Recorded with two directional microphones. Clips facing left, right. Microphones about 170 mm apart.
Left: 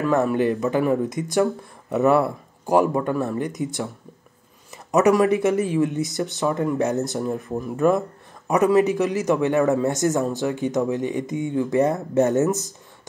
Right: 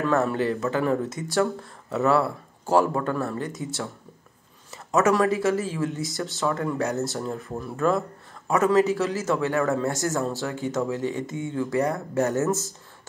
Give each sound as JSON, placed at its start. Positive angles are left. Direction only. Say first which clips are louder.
{"t": 0.0, "sound": "speech", "louder": "left 3 dB", "side_deg": 15}